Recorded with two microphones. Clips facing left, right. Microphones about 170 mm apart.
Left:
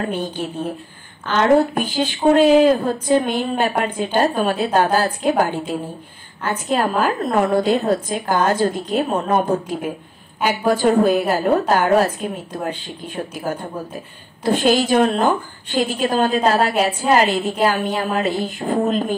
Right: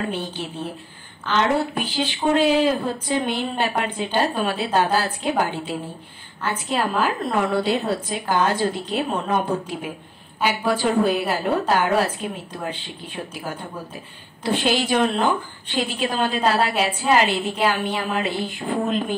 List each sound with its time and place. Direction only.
0.1 s a woman's voice: 45° left (ahead or behind)
14.4 s a woman's voice: 45° left (ahead or behind)